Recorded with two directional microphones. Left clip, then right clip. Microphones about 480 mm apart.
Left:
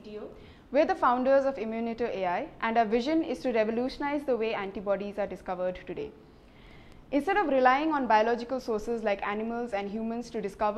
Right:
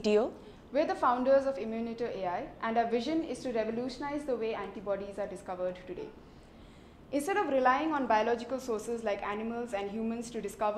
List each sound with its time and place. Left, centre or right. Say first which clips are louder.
0.7 s a woman's voice: left 4 dB; left
7.1 s a woman's voice: left 4 dB; left